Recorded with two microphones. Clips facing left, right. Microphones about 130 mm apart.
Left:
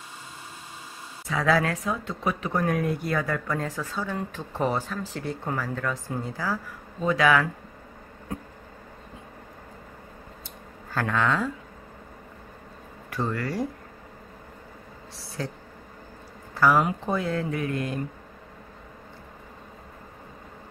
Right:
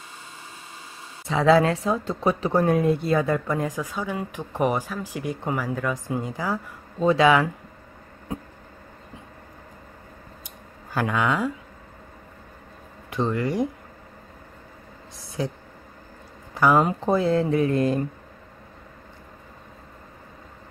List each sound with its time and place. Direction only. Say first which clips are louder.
1.3 s speech: right 6 dB; 25° right (ahead or behind)
10.9 s speech: right 2 dB; 15° right (ahead or behind)
13.1 s speech: right 4 dB; 20° right (ahead or behind)
15.1 s speech: right 5 dB; 15° right (ahead or behind)
16.5 s speech: right 2 dB; 20° right (ahead or behind)
16.8 s speech: right 5 dB; 35° right (ahead or behind)